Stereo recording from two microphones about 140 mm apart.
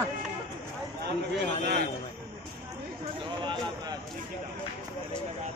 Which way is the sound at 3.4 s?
35° right (ahead or behind).